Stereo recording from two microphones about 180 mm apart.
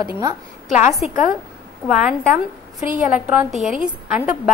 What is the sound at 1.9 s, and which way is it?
A woman's voice, 5° right (ahead or behind).